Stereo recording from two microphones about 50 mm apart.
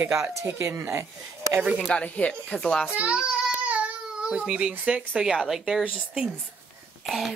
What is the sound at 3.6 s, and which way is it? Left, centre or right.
Baby cry, right.